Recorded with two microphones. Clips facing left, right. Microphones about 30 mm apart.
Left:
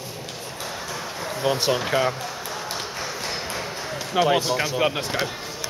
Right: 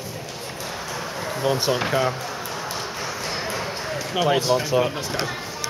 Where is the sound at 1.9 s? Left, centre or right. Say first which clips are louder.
Even; centre.